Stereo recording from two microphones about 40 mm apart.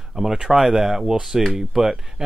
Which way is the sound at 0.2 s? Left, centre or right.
Centre.